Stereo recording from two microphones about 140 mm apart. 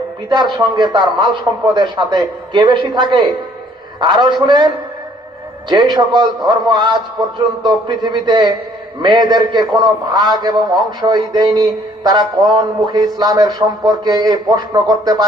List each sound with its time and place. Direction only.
0.3 s a man's voice: 30° right (ahead or behind)